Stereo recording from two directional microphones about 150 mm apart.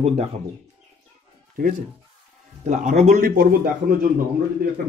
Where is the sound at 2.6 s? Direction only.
55° right (ahead or behind).